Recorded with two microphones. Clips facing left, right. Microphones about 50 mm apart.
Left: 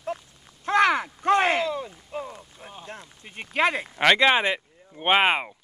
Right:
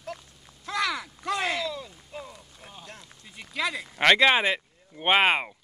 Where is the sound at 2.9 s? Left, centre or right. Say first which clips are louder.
Left 6 dB; left.